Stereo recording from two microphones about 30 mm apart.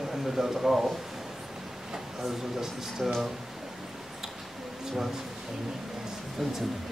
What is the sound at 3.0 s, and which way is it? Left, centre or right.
Speech, centre.